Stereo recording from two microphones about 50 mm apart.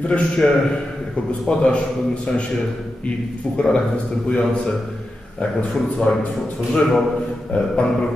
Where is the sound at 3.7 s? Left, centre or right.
Left.